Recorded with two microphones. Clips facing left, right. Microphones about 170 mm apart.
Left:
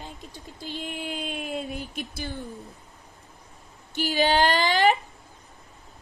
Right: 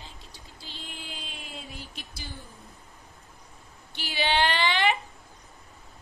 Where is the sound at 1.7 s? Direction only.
50° left (ahead or behind).